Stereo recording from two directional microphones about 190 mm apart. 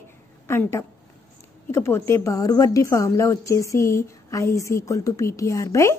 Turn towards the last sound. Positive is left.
turn(degrees=15)  # may be behind; listen again after turning